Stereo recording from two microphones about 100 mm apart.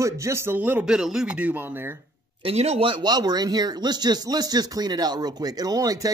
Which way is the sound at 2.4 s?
85° right.